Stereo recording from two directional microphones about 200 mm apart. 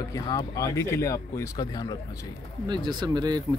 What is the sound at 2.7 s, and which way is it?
Speech, 20° right (ahead or behind).